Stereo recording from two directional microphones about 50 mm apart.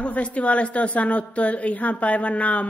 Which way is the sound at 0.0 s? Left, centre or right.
Left.